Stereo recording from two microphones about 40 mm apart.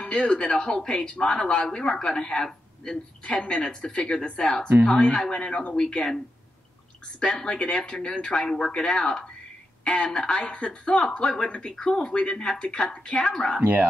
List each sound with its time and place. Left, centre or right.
0.0 s a sound: centre
0.4 s a woman's voice: centre
0.8 s a woman's voice: left
1.6 s a woman's voice: centre
7.2 s a woman's voice: centre